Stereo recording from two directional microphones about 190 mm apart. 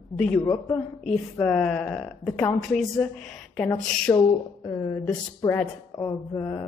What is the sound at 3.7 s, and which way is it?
Speech, 15° left (ahead or behind).